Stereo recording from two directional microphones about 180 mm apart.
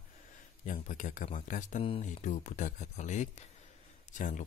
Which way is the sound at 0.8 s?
45° left (ahead or behind).